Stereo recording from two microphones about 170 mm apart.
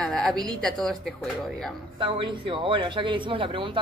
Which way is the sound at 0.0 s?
5° left (ahead or behind).